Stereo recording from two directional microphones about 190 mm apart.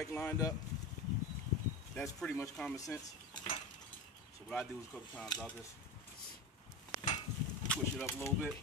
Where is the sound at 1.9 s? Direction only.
5° left (ahead or behind).